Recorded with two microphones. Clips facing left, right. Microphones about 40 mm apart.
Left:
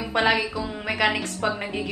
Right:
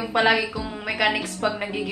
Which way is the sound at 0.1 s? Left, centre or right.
Centre.